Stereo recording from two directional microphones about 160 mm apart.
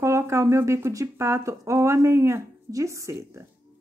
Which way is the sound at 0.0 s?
15° right (ahead or behind).